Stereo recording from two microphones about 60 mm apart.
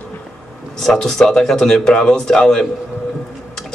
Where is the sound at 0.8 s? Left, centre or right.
Centre.